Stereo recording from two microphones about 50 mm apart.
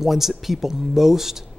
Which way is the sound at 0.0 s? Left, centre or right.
Centre.